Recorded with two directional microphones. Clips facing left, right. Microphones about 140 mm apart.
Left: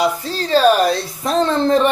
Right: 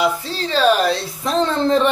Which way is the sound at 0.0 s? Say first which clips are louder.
Left 1 dB; 40° left (ahead or behind).